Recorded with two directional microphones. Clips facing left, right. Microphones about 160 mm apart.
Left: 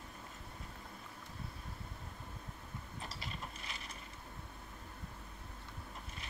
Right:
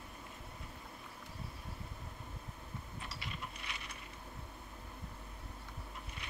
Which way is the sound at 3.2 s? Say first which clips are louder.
Even; 40° left (ahead or behind).